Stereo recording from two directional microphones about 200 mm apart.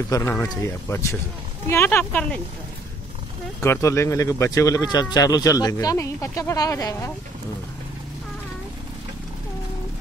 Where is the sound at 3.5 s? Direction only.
15° left (ahead or behind).